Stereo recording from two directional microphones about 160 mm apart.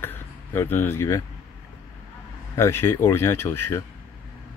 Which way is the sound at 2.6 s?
15° left (ahead or behind).